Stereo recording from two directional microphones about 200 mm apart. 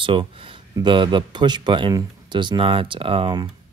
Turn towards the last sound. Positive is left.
turn(degrees=-25)  # may be behind; listen again after turning